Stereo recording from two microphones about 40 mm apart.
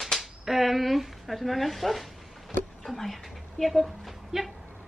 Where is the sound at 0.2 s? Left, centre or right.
Centre.